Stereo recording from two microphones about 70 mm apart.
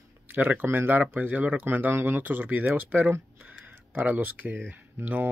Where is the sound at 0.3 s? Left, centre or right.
Right.